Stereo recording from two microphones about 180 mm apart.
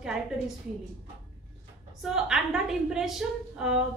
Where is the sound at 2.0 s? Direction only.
5° right (ahead or behind).